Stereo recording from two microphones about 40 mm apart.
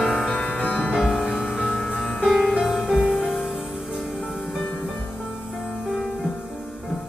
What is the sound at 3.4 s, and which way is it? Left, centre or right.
Music, right.